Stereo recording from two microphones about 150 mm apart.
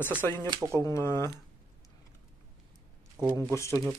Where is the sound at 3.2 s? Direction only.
5° right (ahead or behind).